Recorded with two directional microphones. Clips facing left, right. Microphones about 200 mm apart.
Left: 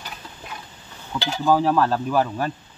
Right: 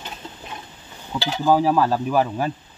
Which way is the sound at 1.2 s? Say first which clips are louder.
Right 1 dB; centre (ahead or behind).